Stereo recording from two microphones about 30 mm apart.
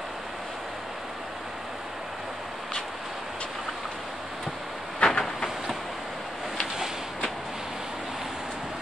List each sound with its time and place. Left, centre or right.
5.0 s train: left